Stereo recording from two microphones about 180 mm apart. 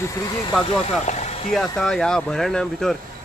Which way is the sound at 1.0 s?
40° left (ahead or behind).